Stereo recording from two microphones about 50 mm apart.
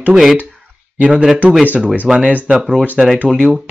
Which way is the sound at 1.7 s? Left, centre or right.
Right.